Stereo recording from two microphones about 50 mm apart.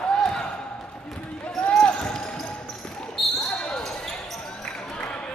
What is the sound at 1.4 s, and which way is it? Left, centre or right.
Basketball bounce, left.